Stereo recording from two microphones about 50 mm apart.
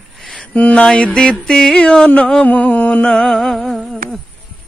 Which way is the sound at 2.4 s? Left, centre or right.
Left.